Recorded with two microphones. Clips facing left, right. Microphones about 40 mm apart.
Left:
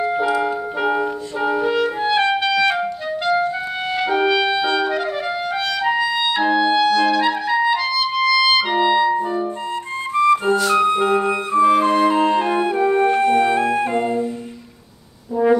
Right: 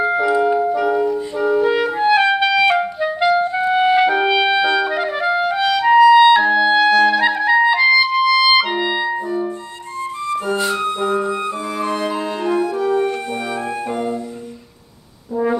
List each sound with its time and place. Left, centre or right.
0.7 s clarinet: left
1.7 s music: centre
2.7 s clarinet: centre
10.1 s music: left
10.5 s music: centre
10.8 s music: left